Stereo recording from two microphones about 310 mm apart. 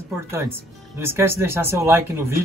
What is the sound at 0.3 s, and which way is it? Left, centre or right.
Speech, centre.